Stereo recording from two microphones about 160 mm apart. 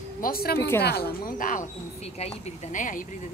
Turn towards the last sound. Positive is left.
turn(degrees=55)  # may be behind; listen again after turning